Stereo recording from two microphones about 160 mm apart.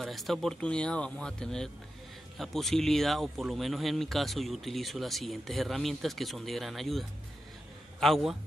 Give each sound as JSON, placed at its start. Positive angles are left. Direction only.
{"t": 0.0, "sound": "speech", "side_deg": 0}